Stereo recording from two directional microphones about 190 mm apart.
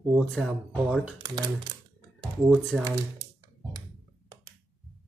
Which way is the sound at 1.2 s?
20° right (ahead or behind).